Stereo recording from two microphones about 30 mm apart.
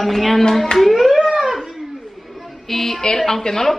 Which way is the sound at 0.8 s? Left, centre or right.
Centre.